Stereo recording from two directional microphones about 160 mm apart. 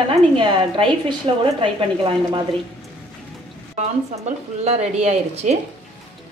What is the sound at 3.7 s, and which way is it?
Speech, 40° right (ahead or behind).